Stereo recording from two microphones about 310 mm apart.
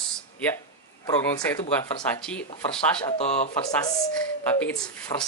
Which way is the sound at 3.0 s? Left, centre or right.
Centre.